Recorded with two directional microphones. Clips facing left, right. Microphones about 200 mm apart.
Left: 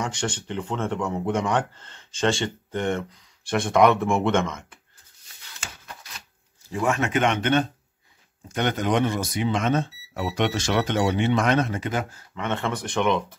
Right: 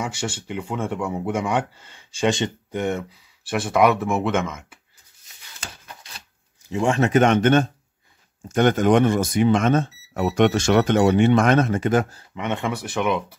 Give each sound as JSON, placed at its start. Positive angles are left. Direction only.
{"t": 0.0, "sound": "speech", "side_deg": -10}
{"t": 6.7, "sound": "speech", "side_deg": -30}
{"t": 12.4, "sound": "speech", "side_deg": -15}